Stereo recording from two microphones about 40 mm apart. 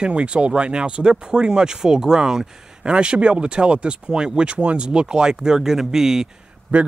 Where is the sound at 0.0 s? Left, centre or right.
Right; by 6.2 s centre.